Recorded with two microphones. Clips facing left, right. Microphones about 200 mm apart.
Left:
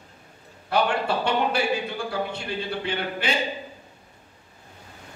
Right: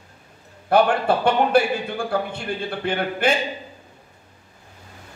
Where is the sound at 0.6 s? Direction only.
50° right (ahead or behind).